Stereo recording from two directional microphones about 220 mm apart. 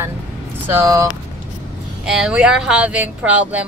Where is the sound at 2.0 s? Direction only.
Centre (ahead or behind).